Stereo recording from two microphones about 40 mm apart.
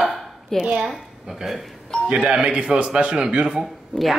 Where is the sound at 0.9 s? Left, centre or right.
Centre.